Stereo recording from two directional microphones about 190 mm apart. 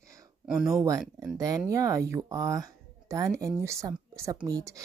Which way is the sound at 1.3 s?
20° right (ahead or behind).